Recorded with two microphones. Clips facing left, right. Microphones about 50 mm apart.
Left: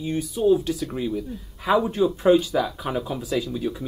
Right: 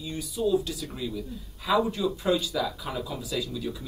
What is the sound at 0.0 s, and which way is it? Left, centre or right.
Speech, left.